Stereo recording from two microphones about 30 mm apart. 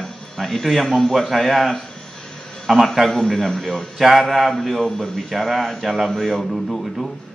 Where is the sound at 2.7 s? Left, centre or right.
Centre.